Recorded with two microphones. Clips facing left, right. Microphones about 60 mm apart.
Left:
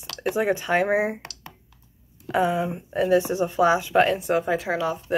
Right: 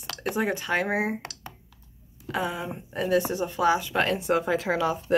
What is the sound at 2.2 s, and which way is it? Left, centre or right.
Speech, centre.